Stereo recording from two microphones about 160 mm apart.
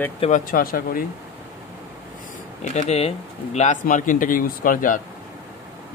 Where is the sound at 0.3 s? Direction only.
60° left (ahead or behind).